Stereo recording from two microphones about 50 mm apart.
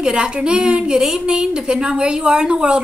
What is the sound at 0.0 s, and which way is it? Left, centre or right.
A woman's voice, centre.